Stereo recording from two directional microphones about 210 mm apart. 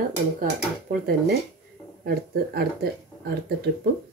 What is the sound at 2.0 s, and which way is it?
Speech, 50° right (ahead or behind).